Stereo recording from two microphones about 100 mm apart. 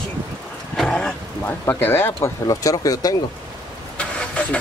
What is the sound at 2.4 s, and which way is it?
Speech, 35° left (ahead or behind).